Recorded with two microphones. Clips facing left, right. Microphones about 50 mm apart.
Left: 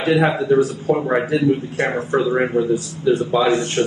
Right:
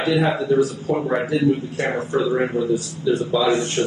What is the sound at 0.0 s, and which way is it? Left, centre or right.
A man's voice, left.